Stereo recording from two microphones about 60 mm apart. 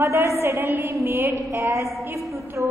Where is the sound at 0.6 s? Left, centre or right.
Right.